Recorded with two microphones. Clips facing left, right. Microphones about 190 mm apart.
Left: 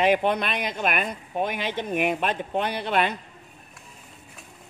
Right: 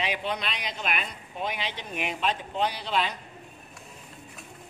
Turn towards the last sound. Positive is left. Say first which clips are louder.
# left 4 dB
turn(degrees=55)  # may be behind; listen again after turning